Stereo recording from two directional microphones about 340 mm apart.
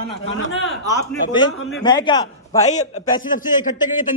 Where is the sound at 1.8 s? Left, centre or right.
Centre.